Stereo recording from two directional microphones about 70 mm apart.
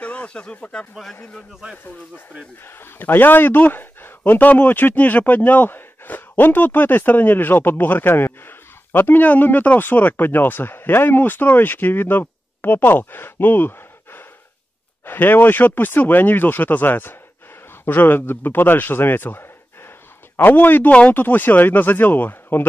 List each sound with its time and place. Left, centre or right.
0.0 s speech: centre
1.5 s a man's voice: centre
2.6 s a man's voice: left